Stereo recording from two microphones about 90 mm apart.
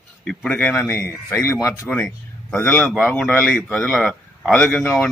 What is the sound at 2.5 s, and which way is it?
A man's voice, 25° left (ahead or behind).